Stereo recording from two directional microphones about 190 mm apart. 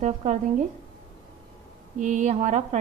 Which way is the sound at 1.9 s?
40° right (ahead or behind).